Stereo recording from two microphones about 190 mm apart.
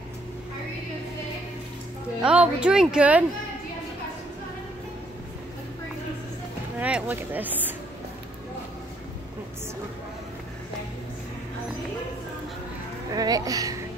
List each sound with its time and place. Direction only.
2.2 s speech: 5° right (ahead or behind)
6.8 s speech: 10° right (ahead or behind)
13.1 s speech: 20° right (ahead or behind)